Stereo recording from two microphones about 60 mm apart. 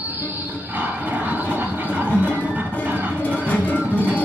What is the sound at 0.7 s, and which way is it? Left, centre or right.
Dog, right.